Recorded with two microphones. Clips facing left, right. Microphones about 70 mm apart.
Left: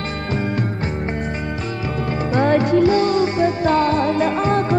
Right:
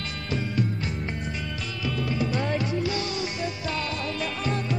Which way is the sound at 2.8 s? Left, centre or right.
Left.